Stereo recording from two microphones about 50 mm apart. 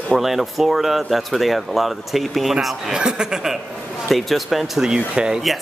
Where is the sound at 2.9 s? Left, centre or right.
Centre.